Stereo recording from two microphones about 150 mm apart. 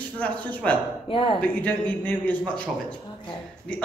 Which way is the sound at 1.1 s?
35° left (ahead or behind).